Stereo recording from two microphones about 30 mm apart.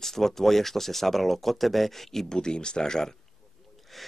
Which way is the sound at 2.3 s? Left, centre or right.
Left.